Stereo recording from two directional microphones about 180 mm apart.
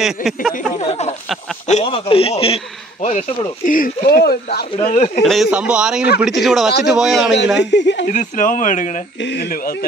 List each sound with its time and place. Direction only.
0.0 s a man's voice: centre (ahead or behind)
0.6 s a man's voice: 35° left (ahead or behind); by 4.6 s 60° left (ahead or behind)
4.9 s a man's voice: 35° left (ahead or behind)
5.2 s a man's voice: centre (ahead or behind)
7.5 s speech: 75° left (ahead or behind)
8.1 s speech: 45° left (ahead or behind)
9.2 s speech: 80° left
9.5 s speech: 55° left (ahead or behind)